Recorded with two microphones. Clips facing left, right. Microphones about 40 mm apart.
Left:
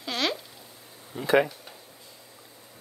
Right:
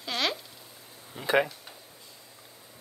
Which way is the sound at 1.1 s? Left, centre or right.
Right.